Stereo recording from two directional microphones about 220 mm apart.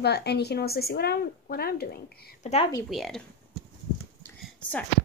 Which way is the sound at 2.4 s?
30° left (ahead or behind).